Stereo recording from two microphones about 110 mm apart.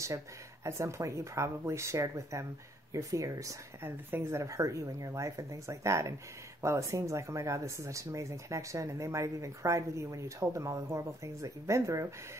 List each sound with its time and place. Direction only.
0.7 s speech: 25° right (ahead or behind)